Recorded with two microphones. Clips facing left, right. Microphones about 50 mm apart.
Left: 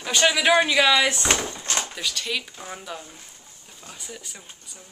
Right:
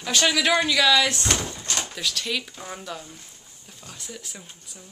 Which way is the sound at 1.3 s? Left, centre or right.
Left.